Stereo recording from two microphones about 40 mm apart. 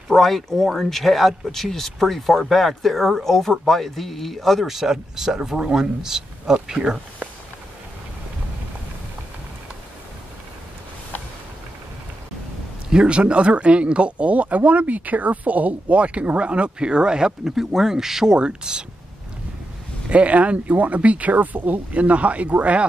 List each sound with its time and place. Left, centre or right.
0.1 s speech: centre
12.9 s speech: right
20.1 s speech: right